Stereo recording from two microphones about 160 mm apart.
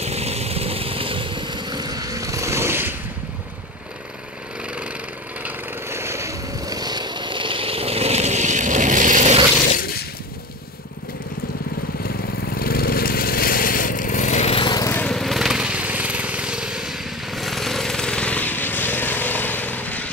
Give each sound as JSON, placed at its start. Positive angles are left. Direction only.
{"t": 0.0, "sound": "vehicle", "side_deg": -40}
{"t": 5.4, "sound": "vehicle", "side_deg": -15}
{"t": 9.7, "sound": "a sound", "side_deg": 65}
{"t": 12.5, "sound": "a sound", "side_deg": 65}
{"t": 14.6, "sound": "lawn mower", "side_deg": 25}
{"t": 14.9, "sound": "vehicle", "side_deg": 10}